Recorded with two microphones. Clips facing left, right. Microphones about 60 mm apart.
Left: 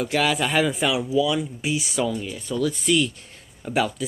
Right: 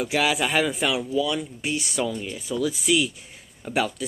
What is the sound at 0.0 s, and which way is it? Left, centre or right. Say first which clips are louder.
Speech: left 1 dB; centre.